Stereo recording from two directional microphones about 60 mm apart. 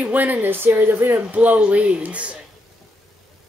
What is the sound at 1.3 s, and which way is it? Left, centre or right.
Speech, right.